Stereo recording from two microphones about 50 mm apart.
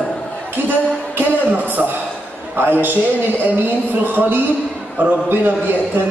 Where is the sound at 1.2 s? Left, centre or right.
Right.